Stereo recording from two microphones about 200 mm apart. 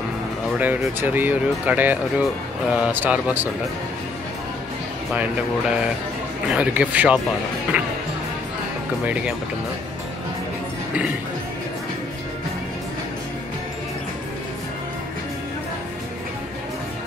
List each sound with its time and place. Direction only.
0.6 s speech: 10° right (ahead or behind)
6.5 s speech: 5° right (ahead or behind)
9.0 s speech: 5° right (ahead or behind)